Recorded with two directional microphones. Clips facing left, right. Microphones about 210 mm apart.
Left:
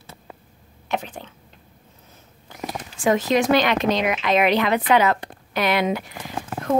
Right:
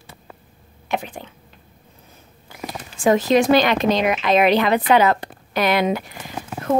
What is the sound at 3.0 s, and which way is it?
Speech, 30° right (ahead or behind).